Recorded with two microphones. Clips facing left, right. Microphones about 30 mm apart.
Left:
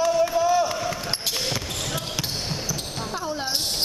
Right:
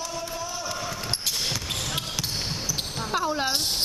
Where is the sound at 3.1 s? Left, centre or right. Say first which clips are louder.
Right 5 dB; right.